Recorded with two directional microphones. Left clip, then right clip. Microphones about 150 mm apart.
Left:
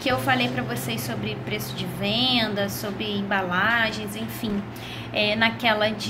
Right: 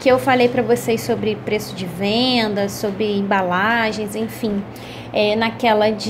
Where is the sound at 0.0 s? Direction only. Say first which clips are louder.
Right 9 dB; 50° right (ahead or behind).